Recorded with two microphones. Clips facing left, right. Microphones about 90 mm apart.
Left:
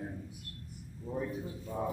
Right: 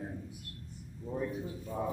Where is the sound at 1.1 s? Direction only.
Centre (ahead or behind).